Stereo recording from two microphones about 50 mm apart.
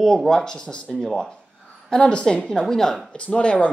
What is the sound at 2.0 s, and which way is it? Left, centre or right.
Speech, left.